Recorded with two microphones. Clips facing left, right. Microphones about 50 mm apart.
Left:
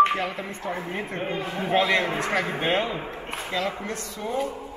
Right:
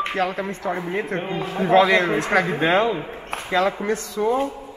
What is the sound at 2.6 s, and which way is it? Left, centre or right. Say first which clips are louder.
Speech: right 6 dB; right.